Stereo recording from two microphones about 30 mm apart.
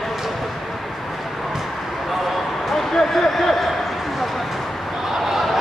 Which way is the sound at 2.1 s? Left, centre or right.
Centre.